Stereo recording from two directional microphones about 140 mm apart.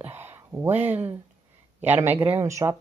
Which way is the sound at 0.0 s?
15° right (ahead or behind).